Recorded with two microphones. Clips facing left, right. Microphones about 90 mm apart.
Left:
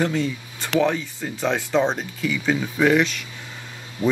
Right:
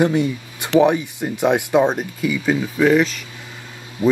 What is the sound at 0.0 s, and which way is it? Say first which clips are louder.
Speech: right 5 dB; 15° right (ahead or behind).